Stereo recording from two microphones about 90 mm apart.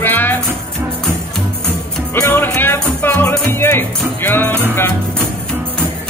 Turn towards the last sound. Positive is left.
turn(degrees=20)  # may be behind; listen again after turning